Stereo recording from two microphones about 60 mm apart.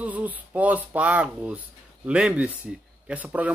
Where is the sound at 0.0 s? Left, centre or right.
Right.